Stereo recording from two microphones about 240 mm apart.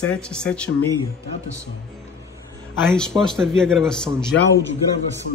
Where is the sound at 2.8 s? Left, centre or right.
Centre.